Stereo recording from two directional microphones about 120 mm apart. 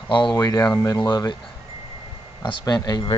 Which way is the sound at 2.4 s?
30° left (ahead or behind).